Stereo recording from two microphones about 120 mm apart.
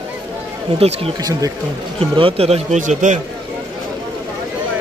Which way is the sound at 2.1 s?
50° right (ahead or behind).